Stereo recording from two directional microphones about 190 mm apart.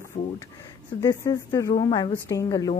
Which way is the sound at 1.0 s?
15° left (ahead or behind).